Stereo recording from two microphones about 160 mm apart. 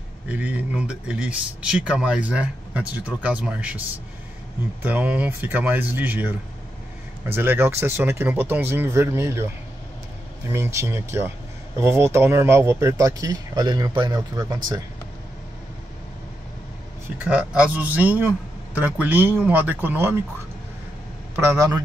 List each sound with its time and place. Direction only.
0.3 s speech: 10° right (ahead or behind)
4.8 s speech: 10° right (ahead or behind)
10.5 s speech: 15° right (ahead or behind)
17.2 s speech: 5° right (ahead or behind)
21.4 s speech: 20° right (ahead or behind)